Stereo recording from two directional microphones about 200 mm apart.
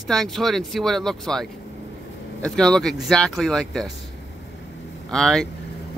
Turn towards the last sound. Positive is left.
turn(degrees=0)  # may be behind; listen again after turning